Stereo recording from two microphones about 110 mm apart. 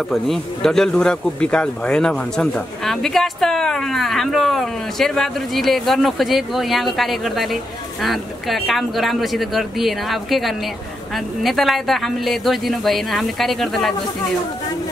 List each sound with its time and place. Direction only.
0.1 s speech: centre (ahead or behind)